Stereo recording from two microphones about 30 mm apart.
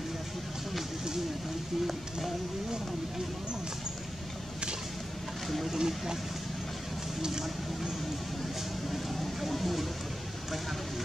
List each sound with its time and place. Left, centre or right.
5.8 s speech: centre
7.2 s speech: centre
8.8 s a sound: centre